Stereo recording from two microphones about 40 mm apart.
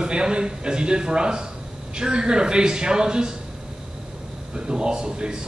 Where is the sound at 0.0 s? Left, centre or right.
Right.